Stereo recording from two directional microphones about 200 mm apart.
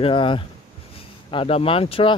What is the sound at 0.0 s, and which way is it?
Speech, 25° left (ahead or behind).